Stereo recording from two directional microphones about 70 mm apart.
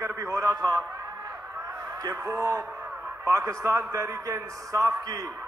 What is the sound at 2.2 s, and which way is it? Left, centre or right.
A man's voice, right.